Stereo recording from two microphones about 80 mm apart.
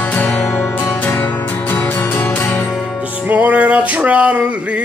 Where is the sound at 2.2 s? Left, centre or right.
Left.